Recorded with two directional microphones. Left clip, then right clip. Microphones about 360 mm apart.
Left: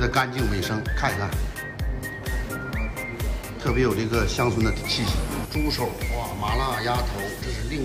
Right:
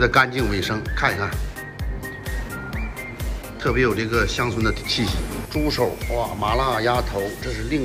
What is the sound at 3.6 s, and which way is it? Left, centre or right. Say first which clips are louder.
Speech: right 3 dB; centre.